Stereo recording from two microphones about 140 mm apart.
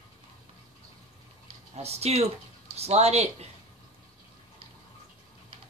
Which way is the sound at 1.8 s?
50° right (ahead or behind).